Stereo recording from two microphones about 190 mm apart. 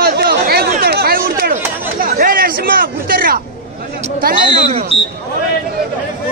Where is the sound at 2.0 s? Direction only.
50° right (ahead or behind).